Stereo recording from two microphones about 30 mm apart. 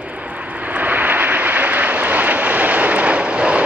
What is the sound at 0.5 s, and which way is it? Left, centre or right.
Vehicle, right.